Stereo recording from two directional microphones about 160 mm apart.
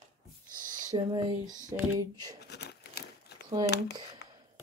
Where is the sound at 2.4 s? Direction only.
90° left.